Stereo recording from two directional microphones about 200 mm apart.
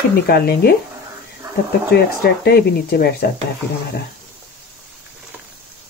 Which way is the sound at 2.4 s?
50° left (ahead or behind).